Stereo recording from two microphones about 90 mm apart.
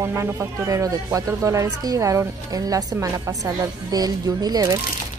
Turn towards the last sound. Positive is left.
turn(degrees=-45)  # may be behind; listen again after turning